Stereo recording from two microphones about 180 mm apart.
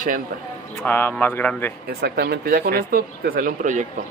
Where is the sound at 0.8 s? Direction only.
10° left (ahead or behind).